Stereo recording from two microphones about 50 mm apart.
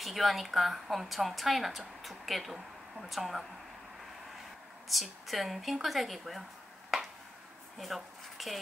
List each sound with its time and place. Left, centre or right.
0.0 s a woman's voice: centre
4.8 s a woman's voice: centre
7.8 s speech: centre